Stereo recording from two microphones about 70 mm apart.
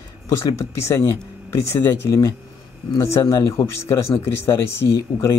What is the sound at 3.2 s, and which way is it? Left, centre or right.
Speech, left.